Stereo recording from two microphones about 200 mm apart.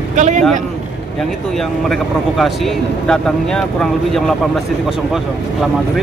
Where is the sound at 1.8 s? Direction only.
Centre (ahead or behind).